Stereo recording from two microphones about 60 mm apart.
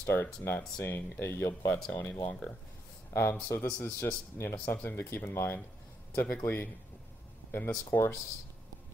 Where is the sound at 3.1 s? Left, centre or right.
Left.